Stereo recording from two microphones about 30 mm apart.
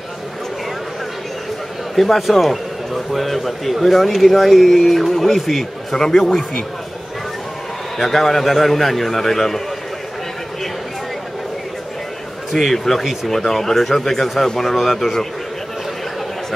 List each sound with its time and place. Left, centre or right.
2.0 s speech: centre
5.9 s a man's voice: centre
8.0 s a man's voice: centre
12.5 s a man's voice: centre